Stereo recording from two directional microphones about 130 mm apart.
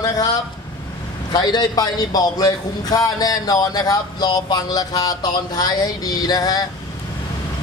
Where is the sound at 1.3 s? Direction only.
35° left (ahead or behind).